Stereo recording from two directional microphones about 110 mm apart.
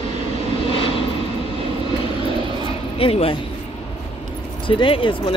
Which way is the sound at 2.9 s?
60° left (ahead or behind).